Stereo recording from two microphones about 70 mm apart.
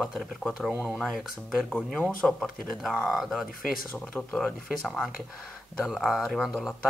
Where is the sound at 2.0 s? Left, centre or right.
Left.